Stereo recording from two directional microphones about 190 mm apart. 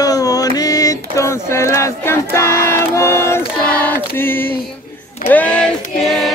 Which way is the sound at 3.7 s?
10° left (ahead or behind).